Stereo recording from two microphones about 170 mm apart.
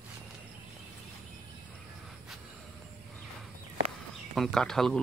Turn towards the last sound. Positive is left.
turn(degrees=5)  # may be behind; listen again after turning